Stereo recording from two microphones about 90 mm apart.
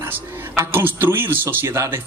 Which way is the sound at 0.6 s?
25° right (ahead or behind).